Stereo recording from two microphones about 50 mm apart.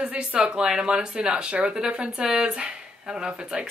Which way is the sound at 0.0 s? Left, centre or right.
Right.